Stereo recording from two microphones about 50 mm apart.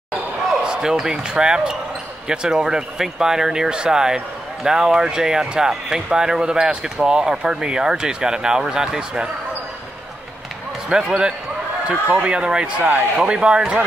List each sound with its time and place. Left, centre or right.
0.7 s speech: centre
10.9 s speech: centre